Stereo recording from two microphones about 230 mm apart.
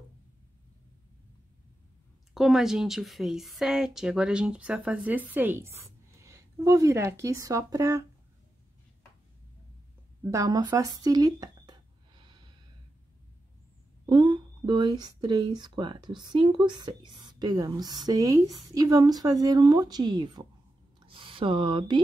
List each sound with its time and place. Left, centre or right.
2.3 s a woman's voice: centre
10.3 s speech: centre
12.2 s snort: centre
14.0 s speech: centre